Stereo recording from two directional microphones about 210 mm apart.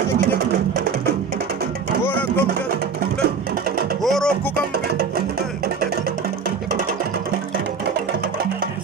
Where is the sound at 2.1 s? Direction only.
10° left (ahead or behind).